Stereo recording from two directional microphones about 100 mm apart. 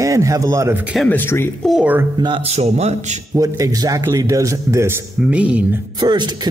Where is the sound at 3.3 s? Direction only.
35° right (ahead or behind).